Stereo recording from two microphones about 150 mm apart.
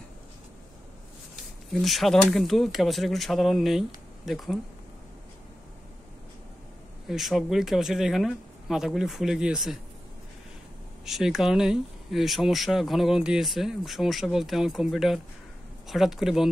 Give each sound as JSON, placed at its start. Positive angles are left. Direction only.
{"t": 1.7, "sound": "speech", "side_deg": 0}
{"t": 7.1, "sound": "speech", "side_deg": 0}
{"t": 11.1, "sound": "speech", "side_deg": 0}